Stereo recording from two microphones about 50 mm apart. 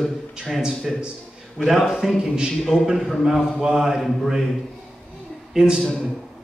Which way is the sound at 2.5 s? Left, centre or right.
Centre.